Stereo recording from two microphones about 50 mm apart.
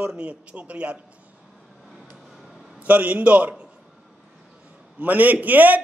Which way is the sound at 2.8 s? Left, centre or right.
Right.